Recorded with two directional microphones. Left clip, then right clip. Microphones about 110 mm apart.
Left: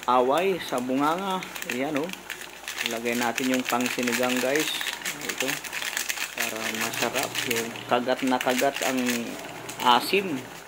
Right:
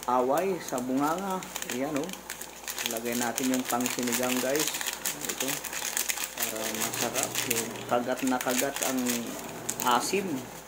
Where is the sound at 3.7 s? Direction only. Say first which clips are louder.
Left 3 dB; 25° left (ahead or behind).